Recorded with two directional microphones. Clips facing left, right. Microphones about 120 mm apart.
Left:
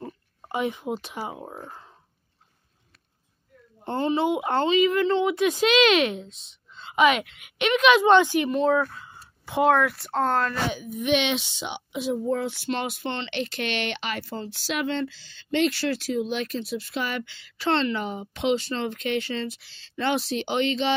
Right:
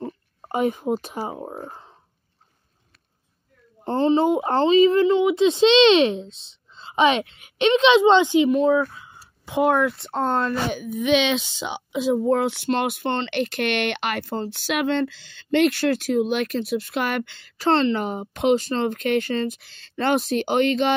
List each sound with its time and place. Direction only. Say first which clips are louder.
0.5 s speech: right 5 dB; 45° right (ahead or behind)
1.4 s speech: right 5 dB; 30° right (ahead or behind)
3.8 s speech: right 5 dB; 30° right (ahead or behind)
5.0 s speech: right 4 dB; 10° right (ahead or behind)
5.3 s a woman's voice: right 5 dB; 25° right (ahead or behind)
8.5 s speech: right 4 dB; 5° right (ahead or behind)
9.8 s a woman's voice: right 1 dB; 25° right (ahead or behind)
11.1 s speech: right 3 dB; 90° right; by 12.6 s 70° right (ahead or behind)
12.8 s speech: right 6 dB; 50° right (ahead or behind)
17.6 s speech: right 5 dB; 40° right (ahead or behind)